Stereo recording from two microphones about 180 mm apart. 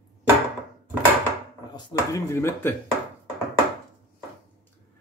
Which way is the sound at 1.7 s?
15° left (ahead or behind).